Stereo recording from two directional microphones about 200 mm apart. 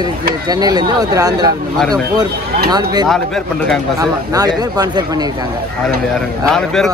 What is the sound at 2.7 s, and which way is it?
Speech, 20° right (ahead or behind).